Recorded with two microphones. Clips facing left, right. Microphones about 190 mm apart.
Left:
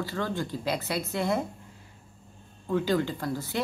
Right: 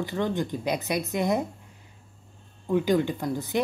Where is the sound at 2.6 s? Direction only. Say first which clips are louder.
Right 3 dB; 15° right (ahead or behind).